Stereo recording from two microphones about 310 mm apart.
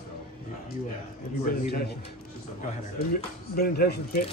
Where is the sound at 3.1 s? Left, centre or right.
Left.